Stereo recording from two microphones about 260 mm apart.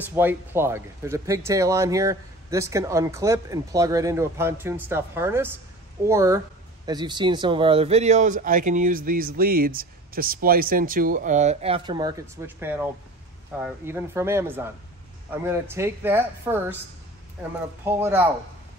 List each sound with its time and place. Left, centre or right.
0.0 s speech: centre